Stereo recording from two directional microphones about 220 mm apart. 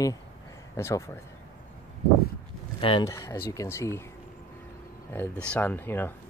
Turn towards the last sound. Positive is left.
turn(degrees=10)  # may be behind; listen again after turning